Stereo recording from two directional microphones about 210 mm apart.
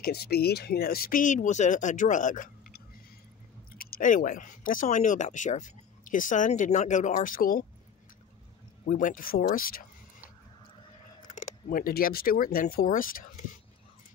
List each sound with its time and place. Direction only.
0.0 s speech: 45° left (ahead or behind)
8.8 s speech: 40° left (ahead or behind)
11.2 s speech: 45° left (ahead or behind)